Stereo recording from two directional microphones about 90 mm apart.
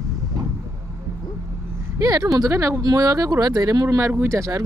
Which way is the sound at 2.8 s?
45° right (ahead or behind).